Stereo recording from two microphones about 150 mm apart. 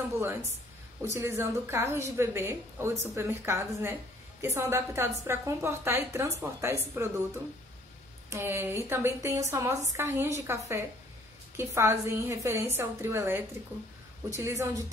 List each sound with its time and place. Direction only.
0.2 s a woman's voice: 20° right (ahead or behind)
8.3 s a woman's voice: 15° right (ahead or behind)